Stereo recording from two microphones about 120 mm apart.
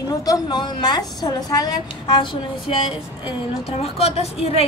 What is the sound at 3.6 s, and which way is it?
Speech, 60° left (ahead or behind).